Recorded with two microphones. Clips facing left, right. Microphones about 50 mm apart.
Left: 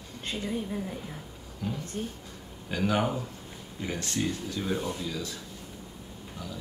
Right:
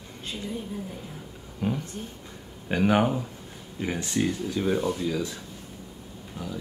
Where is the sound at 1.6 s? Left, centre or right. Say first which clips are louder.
Right 6 dB; right.